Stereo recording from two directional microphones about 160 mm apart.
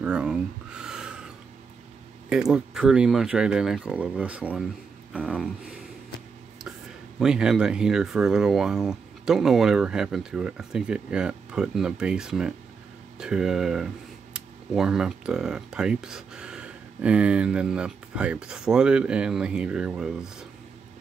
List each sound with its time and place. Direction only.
0.0 s speech: 5° right (ahead or behind)
2.2 s speech: 5° right (ahead or behind)
7.2 s speech: 5° right (ahead or behind)